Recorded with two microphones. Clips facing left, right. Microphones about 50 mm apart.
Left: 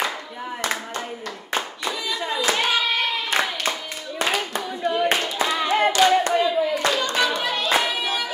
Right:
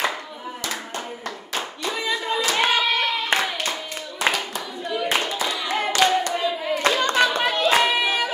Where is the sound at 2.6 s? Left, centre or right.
Right.